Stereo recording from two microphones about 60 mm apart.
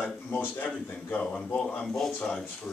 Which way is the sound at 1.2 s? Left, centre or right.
Centre.